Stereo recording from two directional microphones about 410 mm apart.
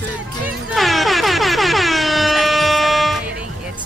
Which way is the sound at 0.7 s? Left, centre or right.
Centre.